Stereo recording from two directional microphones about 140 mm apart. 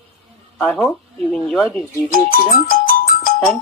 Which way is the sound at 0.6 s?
5° left (ahead or behind).